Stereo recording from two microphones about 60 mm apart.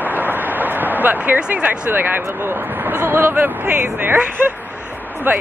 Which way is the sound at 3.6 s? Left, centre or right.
Right.